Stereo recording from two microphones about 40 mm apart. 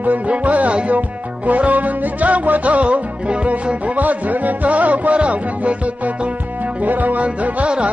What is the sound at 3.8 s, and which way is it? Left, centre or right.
Music, right.